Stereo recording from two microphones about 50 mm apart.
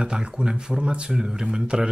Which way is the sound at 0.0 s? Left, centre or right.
Centre.